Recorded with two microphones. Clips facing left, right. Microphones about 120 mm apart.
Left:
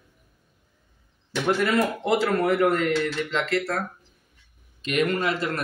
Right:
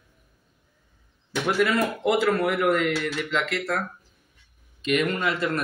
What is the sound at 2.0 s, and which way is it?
Speech, 30° left (ahead or behind).